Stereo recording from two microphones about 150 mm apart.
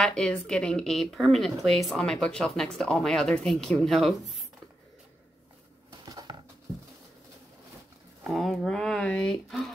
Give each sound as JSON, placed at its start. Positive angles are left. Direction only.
{"t": 0.0, "sound": "speech", "side_deg": 5}
{"t": 5.9, "sound": "a sound", "side_deg": -25}
{"t": 8.2, "sound": "speech", "side_deg": 0}